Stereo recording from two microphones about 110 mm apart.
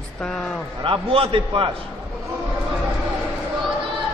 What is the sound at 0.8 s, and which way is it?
Speech, 55° right (ahead or behind).